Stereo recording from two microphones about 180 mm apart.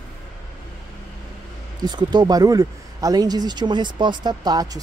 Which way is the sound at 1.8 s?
25° right (ahead or behind).